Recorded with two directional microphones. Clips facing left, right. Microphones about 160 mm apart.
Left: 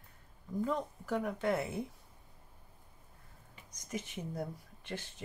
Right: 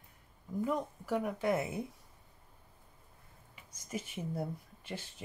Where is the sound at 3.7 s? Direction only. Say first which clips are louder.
Even; 10° right (ahead or behind).